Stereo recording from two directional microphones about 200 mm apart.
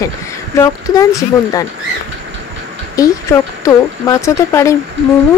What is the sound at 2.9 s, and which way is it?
Speech, 15° left (ahead or behind).